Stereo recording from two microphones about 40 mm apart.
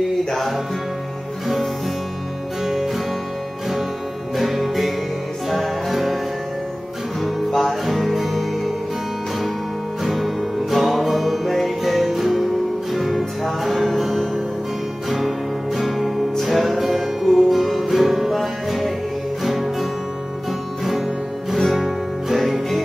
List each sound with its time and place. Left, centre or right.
2.6 s music: centre
4.4 s music: centre
7.2 s music: centre
10.0 s music: centre
21.7 s music: centre